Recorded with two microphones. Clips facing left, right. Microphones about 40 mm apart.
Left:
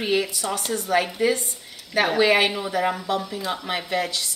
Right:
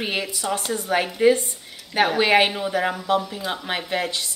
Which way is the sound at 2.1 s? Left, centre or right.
Right.